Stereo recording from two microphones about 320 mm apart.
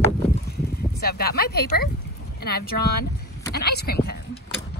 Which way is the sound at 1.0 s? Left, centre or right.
Left.